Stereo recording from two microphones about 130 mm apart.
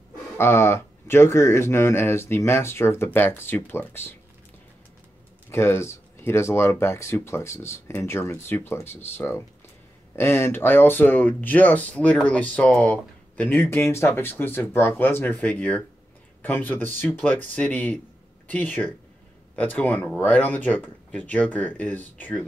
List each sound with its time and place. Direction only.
0.4 s speech: 20° left (ahead or behind)
5.5 s speech: 20° left (ahead or behind)